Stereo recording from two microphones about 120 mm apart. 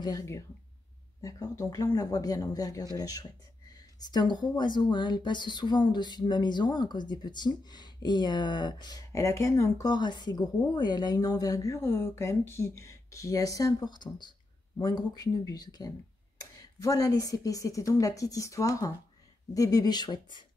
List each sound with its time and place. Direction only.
0.0 s speech: 30° left (ahead or behind)